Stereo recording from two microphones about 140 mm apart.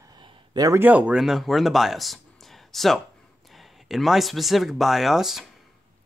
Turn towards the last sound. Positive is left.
turn(degrees=0)  # may be behind; listen again after turning